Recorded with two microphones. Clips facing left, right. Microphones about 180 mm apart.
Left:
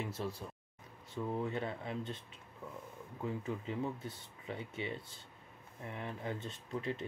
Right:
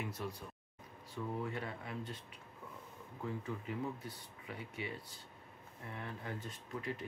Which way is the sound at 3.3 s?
25° left (ahead or behind).